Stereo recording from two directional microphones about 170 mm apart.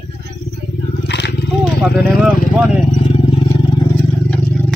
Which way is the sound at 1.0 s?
90° left.